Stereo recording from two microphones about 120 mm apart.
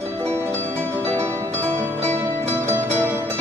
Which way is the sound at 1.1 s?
55° right (ahead or behind).